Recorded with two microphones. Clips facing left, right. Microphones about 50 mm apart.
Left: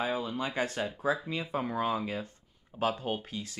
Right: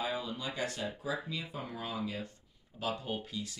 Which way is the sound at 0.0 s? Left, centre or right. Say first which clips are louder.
Left 5 dB; left.